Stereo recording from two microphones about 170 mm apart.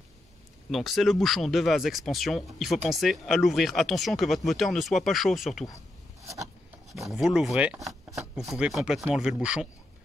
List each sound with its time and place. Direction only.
0.7 s speech: centre (ahead or behind)
6.2 s a sound: 20° right (ahead or behind)
6.9 s speech: centre (ahead or behind)